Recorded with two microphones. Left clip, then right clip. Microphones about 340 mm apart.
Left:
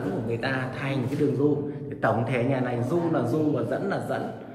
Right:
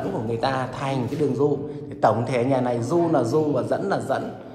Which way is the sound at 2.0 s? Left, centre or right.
Centre.